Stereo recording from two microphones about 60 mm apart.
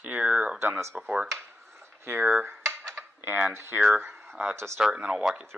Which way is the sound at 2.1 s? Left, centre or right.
Right.